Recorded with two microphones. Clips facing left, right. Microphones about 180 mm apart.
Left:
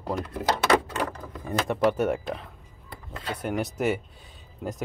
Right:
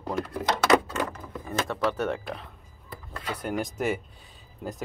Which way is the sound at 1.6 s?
15° left (ahead or behind).